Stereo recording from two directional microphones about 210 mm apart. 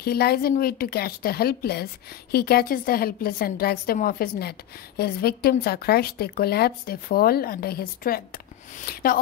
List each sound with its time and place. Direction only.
0.0 s a woman's voice: 50° left (ahead or behind)